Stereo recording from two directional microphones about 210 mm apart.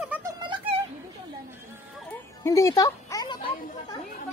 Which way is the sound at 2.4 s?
15° left (ahead or behind).